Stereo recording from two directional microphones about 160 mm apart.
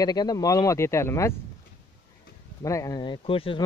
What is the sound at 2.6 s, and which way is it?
Speech, 20° left (ahead or behind).